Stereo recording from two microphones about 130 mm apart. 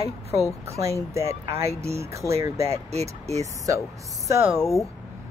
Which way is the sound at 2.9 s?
55° right (ahead or behind).